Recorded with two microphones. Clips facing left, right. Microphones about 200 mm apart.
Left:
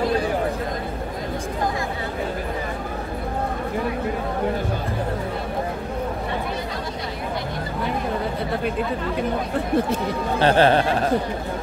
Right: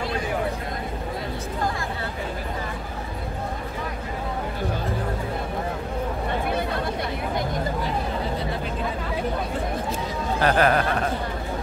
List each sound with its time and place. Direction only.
10.4 s speech: 30° left (ahead or behind)